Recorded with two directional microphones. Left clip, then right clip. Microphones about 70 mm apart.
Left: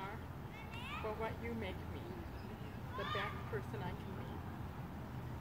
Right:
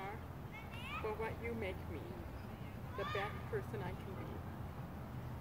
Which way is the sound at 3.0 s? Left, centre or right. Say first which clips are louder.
Even; centre.